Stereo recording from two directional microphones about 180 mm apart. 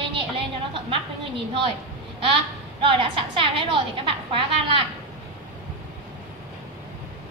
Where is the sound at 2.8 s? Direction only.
30° right (ahead or behind).